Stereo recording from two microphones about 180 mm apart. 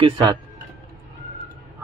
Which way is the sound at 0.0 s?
20° right (ahead or behind).